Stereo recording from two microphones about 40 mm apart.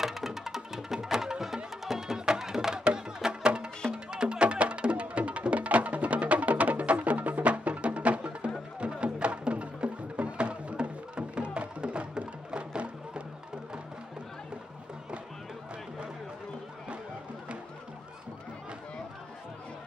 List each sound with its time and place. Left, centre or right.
0.0 s music: centre; by 13.2 s right